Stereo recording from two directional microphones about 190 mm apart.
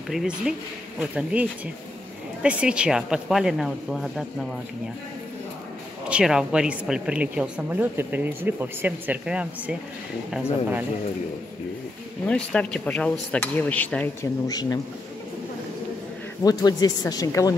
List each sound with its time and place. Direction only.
0.1 s speech: 5° right (ahead or behind)
6.0 s a woman's voice: 5° right (ahead or behind)
12.3 s speech: 5° left (ahead or behind)
14.5 s speech: 20° left (ahead or behind)
16.4 s speech: 20° left (ahead or behind)